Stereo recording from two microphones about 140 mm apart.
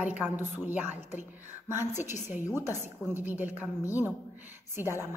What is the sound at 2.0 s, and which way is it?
A woman's voice, 15° right (ahead or behind).